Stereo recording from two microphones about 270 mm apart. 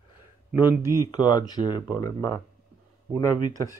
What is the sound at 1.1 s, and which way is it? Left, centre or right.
Speech, centre.